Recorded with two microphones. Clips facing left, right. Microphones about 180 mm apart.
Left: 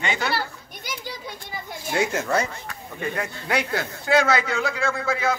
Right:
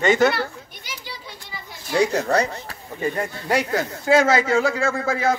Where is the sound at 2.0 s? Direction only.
35° right (ahead or behind).